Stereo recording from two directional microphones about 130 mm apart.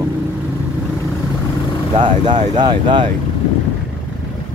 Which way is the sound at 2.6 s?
35° right (ahead or behind).